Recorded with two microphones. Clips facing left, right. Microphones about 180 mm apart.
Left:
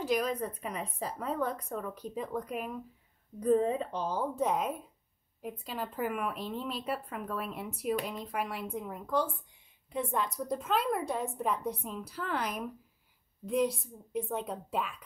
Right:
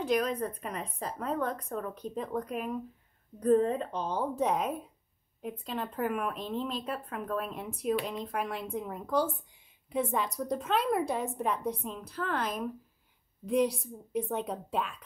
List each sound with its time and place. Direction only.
0.0 s a woman's voice: 5° left (ahead or behind)
13.5 s a woman's voice: centre (ahead or behind)